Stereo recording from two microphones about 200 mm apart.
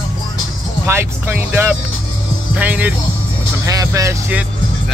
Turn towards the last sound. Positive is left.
turn(degrees=-10)  # may be behind; listen again after turning